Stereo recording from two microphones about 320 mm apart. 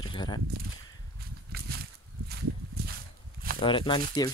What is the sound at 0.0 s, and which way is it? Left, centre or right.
Walk, centre.